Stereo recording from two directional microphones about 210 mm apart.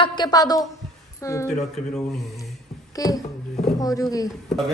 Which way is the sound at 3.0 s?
15° left (ahead or behind).